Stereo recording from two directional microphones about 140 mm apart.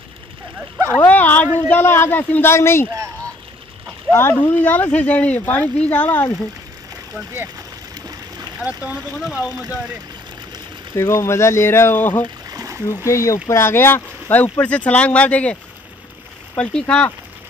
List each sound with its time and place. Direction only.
1.0 s a sound: 10° left (ahead or behind)
1.7 s speech: 15° left (ahead or behind)
4.1 s speech: 15° left (ahead or behind)
8.5 s speech: 10° right (ahead or behind)
11.0 s speech: 20° left (ahead or behind)
12.4 s splash: 25° right (ahead or behind)
12.8 s speech: 20° left (ahead or behind)
16.5 s speech: 5° left (ahead or behind)